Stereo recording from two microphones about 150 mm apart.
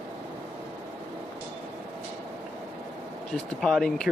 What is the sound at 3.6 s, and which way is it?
Speech, 5° left (ahead or behind).